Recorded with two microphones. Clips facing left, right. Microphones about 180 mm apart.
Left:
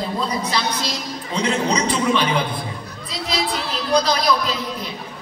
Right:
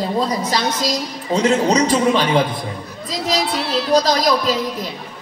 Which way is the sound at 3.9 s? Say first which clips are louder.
Right 3 dB; 40° right (ahead or behind).